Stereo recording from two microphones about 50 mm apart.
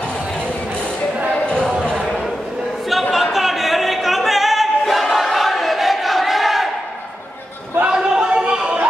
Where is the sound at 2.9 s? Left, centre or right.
Centre.